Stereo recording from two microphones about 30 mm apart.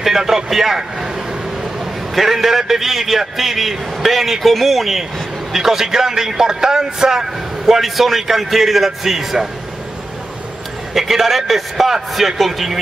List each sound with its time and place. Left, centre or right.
0.0 s a sound: centre
0.5 s a man's voice: centre
2.1 s a man's voice: centre; by 7.2 s right
7.6 s a man's voice: centre
10.9 s a man's voice: centre